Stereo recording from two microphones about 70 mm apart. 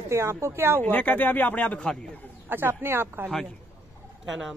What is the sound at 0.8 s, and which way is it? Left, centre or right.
Speech, left.